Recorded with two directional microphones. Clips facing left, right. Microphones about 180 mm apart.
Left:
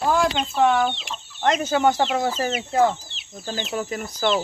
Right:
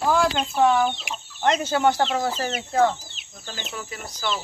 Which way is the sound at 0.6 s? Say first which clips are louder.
Even; centre (ahead or behind).